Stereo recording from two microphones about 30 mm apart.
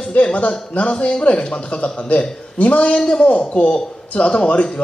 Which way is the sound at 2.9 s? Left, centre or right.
Left.